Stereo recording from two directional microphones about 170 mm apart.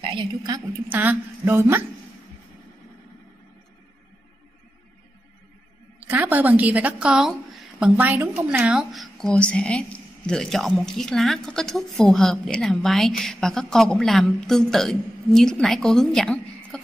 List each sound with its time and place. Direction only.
0.0 s a woman's voice: 25° right (ahead or behind)
0.8 s speech: 10° right (ahead or behind)
5.9 s a woman's voice: 10° right (ahead or behind)